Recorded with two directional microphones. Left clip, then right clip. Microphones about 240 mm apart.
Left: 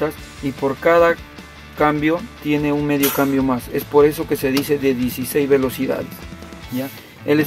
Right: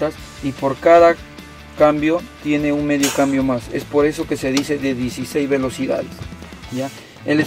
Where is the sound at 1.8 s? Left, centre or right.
Left.